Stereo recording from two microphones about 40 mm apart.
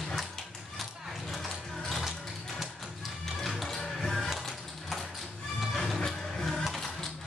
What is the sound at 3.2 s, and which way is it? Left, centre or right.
Music, centre.